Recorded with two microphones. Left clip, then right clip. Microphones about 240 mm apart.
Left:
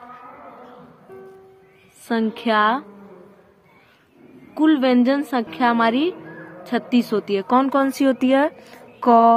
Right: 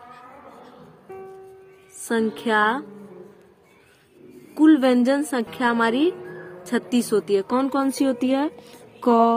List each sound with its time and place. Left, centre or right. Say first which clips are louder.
2.0 s a woman's voice: left 1 dB; centre
4.6 s a woman's voice: even; centre
9.0 s a sound: left 4 dB; centre